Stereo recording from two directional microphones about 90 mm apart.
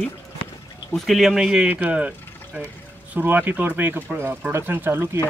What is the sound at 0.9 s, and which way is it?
Speech, centre (ahead or behind).